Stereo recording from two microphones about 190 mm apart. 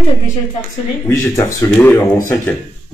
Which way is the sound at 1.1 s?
15° left (ahead or behind).